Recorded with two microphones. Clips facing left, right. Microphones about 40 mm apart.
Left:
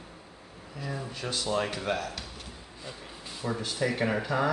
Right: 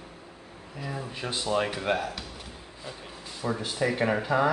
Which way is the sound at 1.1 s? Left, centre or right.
Right.